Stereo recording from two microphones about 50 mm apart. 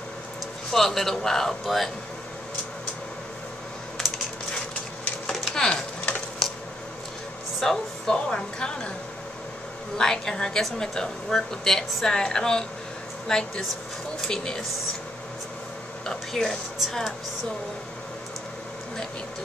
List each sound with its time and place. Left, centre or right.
0.7 s a woman's voice: centre
4.6 s a sound: centre
7.6 s a woman's voice: centre
9.9 s a woman's voice: centre
16.1 s speech: centre